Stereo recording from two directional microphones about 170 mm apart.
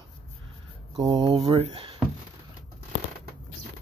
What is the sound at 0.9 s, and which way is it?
Speech, 25° right (ahead or behind).